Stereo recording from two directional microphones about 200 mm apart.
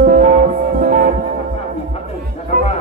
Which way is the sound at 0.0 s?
45° right (ahead or behind).